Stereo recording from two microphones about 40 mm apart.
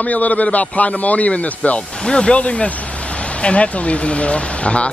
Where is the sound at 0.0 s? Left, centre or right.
Left.